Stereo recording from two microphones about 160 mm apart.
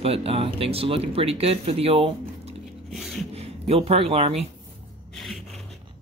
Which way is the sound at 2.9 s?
Centre (ahead or behind).